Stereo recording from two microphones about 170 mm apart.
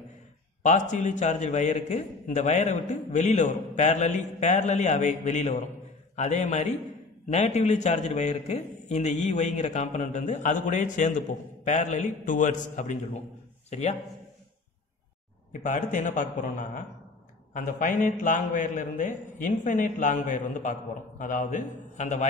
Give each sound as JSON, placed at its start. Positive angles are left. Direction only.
{"t": 0.6, "sound": "a man's voice", "side_deg": 45}
{"t": 15.6, "sound": "a man's voice", "side_deg": 45}